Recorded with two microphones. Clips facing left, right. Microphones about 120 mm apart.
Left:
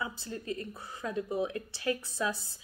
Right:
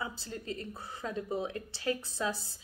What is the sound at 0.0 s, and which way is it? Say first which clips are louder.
A woman's voice: left 2 dB; 25° right (ahead or behind).